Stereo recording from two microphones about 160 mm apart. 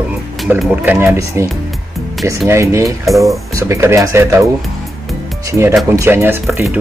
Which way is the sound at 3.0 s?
Centre (ahead or behind).